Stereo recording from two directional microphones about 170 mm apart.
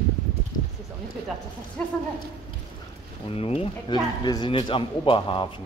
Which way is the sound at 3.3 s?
35° left (ahead or behind).